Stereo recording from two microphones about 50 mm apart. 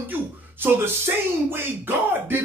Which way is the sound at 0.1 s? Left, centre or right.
Right.